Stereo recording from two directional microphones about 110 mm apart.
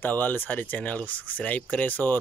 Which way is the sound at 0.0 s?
15° left (ahead or behind).